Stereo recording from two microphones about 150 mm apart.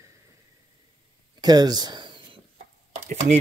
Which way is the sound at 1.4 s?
25° right (ahead or behind).